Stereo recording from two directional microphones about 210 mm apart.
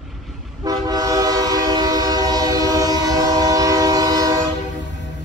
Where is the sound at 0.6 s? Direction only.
15° right (ahead or behind).